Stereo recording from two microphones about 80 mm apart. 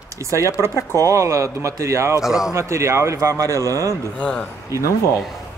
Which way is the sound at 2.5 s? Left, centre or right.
Right.